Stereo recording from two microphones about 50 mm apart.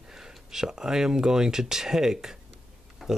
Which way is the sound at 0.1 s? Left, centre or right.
Centre.